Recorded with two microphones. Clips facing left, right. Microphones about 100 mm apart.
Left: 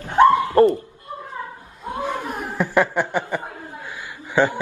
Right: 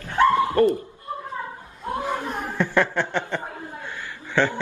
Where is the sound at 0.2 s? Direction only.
20° left (ahead or behind).